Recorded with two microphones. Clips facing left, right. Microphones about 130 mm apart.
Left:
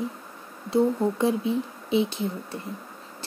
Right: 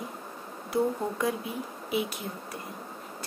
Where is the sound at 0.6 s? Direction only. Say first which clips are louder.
Left 6 dB; 25° left (ahead or behind).